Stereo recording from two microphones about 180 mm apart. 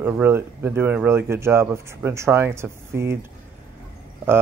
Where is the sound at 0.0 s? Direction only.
10° right (ahead or behind).